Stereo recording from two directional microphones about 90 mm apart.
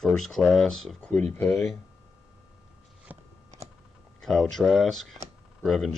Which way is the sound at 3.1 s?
20° right (ahead or behind).